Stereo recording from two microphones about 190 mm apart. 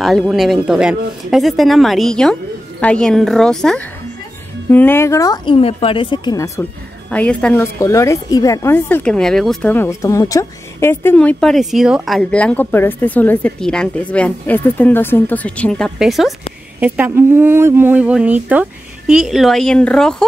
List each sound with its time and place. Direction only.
0.0 s a woman's voice: centre (ahead or behind)